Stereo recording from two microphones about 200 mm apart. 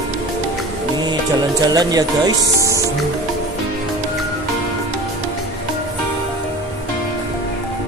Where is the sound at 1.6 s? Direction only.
20° right (ahead or behind).